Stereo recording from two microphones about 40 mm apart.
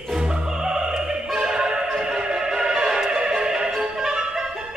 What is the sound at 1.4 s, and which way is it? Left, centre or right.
Music, right.